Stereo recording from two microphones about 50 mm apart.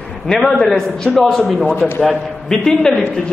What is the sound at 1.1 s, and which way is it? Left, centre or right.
Speech, centre.